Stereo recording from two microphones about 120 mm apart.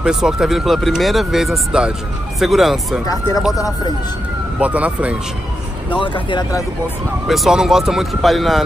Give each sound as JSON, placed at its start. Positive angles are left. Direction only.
{"t": 0.0, "sound": "speech", "side_deg": -5}
{"t": 3.5, "sound": "speech", "side_deg": 30}
{"t": 4.6, "sound": "speech", "side_deg": -10}
{"t": 5.9, "sound": "speech", "side_deg": 45}
{"t": 7.2, "sound": "speech", "side_deg": 0}